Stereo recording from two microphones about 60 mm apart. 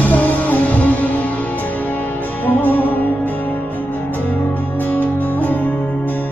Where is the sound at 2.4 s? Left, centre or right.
Left.